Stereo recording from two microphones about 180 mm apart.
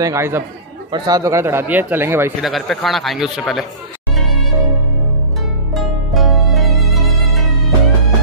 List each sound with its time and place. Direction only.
0.0 s speech: 15° right (ahead or behind)
2.4 s speech: centre (ahead or behind)
5.7 s music: centre (ahead or behind)